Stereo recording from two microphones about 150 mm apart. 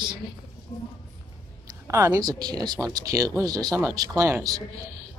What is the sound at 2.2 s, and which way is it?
Speech, 25° right (ahead or behind).